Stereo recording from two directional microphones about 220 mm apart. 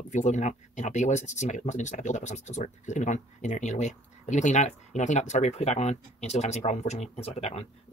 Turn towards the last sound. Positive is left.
turn(degrees=30)  # may be behind; listen again after turning